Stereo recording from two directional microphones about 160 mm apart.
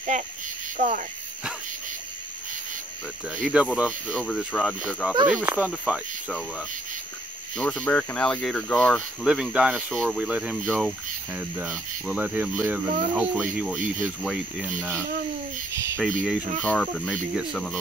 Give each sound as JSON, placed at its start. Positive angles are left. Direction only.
{"t": 0.7, "sound": "speech", "side_deg": -50}
{"t": 3.3, "sound": "speech", "side_deg": -5}
{"t": 7.5, "sound": "speech", "side_deg": 10}
{"t": 9.2, "sound": "speech", "side_deg": -5}
{"t": 15.7, "sound": "speech", "side_deg": -20}
{"t": 16.0, "sound": "speech", "side_deg": -5}